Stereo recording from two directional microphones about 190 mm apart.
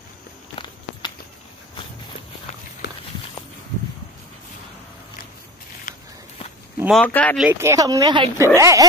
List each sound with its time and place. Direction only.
5.9 s walk: 40° left (ahead or behind)
6.9 s speech: 5° left (ahead or behind)
7.3 s speech: 10° right (ahead or behind)